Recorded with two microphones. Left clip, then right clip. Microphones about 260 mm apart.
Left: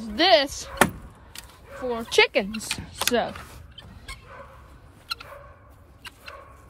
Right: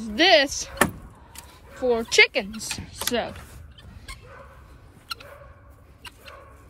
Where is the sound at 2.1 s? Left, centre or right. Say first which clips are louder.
Even; left.